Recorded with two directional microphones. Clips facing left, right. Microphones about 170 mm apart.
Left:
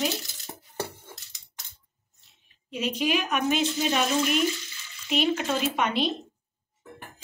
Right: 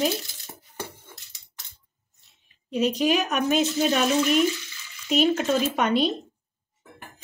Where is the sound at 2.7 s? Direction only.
40° right (ahead or behind).